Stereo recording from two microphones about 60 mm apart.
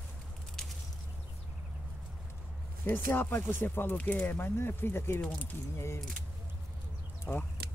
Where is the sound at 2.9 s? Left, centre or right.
Left.